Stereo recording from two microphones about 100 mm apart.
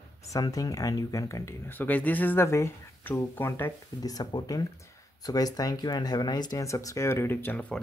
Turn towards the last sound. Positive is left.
turn(degrees=20)  # may be behind; listen again after turning